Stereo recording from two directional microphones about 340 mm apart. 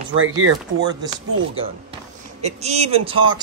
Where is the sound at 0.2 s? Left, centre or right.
Right.